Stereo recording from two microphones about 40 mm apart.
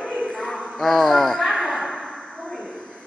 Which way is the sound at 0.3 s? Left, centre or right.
Centre.